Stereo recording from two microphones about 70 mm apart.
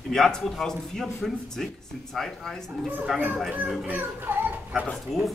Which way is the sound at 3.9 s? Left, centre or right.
Right.